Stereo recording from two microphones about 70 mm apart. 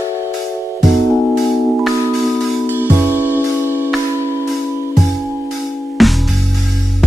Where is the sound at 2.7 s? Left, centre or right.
Right.